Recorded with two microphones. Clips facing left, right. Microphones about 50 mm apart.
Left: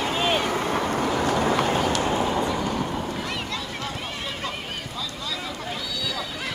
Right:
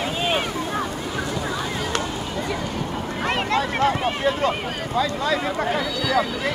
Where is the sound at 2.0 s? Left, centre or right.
Left.